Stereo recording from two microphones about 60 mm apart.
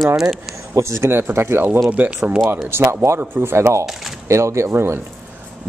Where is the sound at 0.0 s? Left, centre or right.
Centre.